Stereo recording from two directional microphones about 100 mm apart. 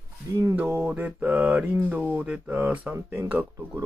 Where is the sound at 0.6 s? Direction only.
20° right (ahead or behind).